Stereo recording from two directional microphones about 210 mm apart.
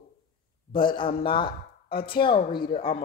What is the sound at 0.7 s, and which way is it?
Speech, 25° left (ahead or behind).